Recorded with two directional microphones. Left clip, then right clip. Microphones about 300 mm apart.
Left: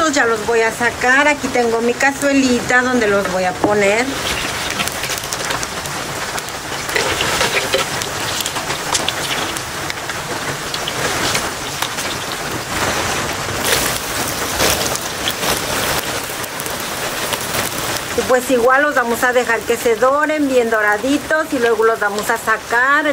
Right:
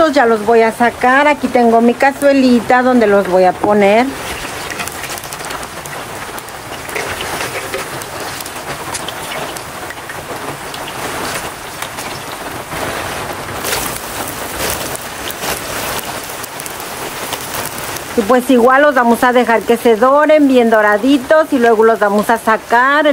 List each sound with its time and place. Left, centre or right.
0.0 s speech: centre
18.3 s speech: right